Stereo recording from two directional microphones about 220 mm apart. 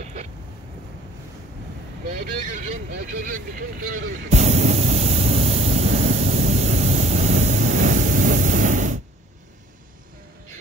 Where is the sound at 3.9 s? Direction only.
30° right (ahead or behind).